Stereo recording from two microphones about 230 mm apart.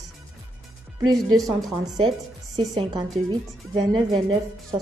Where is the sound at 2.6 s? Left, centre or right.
Centre.